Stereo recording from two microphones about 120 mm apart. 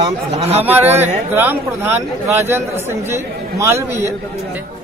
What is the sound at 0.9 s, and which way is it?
Speech, 70° right (ahead or behind).